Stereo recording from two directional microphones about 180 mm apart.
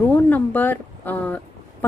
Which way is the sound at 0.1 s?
10° left (ahead or behind).